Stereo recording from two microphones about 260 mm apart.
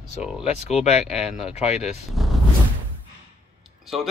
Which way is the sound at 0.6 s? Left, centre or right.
Left.